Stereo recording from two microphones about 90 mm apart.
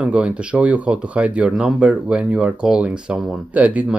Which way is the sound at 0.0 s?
10° right (ahead or behind).